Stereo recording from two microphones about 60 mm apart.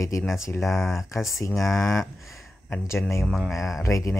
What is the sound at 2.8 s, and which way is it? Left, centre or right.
Speech, left.